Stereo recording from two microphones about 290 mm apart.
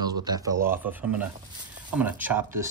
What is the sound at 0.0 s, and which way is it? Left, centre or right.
Speech, centre.